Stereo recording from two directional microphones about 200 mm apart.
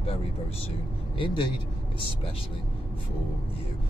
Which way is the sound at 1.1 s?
25° left (ahead or behind).